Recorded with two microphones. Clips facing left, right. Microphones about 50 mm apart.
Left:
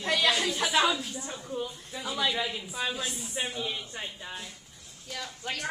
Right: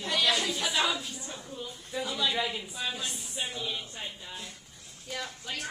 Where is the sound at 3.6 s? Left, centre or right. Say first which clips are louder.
Left 1 dB; left.